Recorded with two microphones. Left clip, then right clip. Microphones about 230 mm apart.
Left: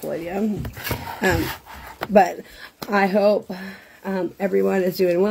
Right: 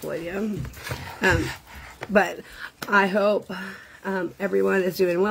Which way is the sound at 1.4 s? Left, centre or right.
Left.